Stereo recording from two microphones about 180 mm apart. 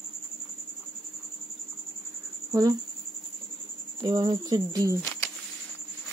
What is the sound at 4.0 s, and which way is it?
Speech, 25° right (ahead or behind).